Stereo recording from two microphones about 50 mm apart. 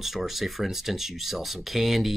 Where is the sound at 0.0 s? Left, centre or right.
Centre.